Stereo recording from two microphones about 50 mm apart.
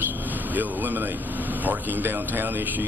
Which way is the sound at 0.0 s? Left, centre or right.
Right.